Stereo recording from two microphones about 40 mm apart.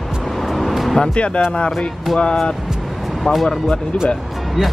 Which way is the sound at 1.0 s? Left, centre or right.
Left.